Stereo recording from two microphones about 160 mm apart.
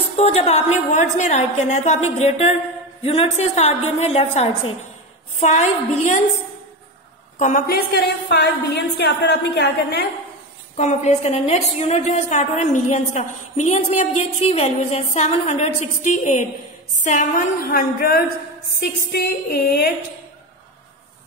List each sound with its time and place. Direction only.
0.1 s a woman's voice: 40° left (ahead or behind)
7.3 s a woman's voice: 55° left (ahead or behind)
8.3 s a woman's voice: 90° left
10.8 s a woman's voice: 45° left (ahead or behind)
17.6 s a sound: 65° left (ahead or behind)
18.8 s a sound: 80° left